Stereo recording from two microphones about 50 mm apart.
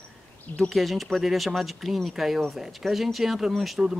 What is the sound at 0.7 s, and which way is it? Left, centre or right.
Speech, centre.